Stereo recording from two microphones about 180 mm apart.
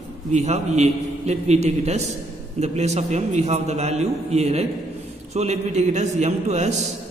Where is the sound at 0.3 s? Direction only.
40° right (ahead or behind).